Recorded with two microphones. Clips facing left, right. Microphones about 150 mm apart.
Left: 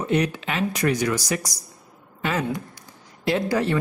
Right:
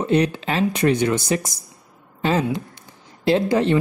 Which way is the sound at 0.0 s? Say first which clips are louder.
Right 4 dB; 30° right (ahead or behind).